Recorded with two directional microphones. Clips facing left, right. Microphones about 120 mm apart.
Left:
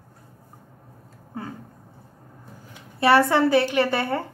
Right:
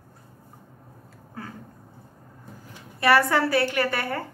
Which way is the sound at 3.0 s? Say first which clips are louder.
Left 3 dB; 25° left (ahead or behind).